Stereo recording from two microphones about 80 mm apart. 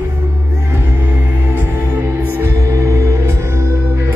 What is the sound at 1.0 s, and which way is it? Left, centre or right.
Music, right.